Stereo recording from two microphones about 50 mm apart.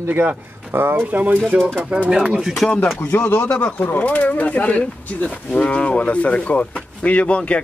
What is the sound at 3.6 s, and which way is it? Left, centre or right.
Speech, left.